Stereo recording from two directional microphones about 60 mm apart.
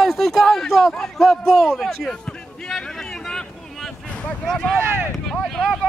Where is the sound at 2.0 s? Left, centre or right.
Centre.